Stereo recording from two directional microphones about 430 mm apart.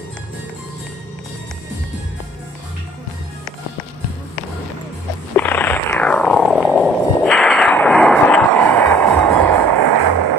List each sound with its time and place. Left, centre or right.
5.3 s music: centre
9.7 s music: right